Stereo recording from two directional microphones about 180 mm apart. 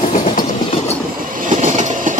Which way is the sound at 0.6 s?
30° left (ahead or behind).